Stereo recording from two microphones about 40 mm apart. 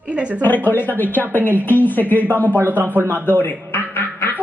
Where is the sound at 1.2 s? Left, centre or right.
Right.